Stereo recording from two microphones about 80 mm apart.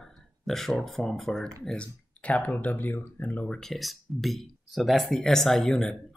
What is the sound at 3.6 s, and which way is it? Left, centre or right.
Speech, centre.